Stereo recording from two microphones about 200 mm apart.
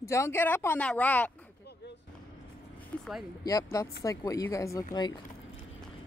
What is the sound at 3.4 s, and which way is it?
Speech, 15° left (ahead or behind).